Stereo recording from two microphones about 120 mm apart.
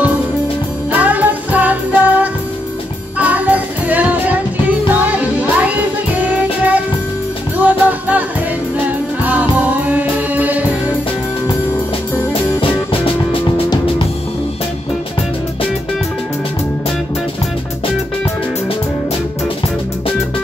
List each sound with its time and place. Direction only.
0.9 s music: 15° right (ahead or behind)
12.5 s music: 50° left (ahead or behind)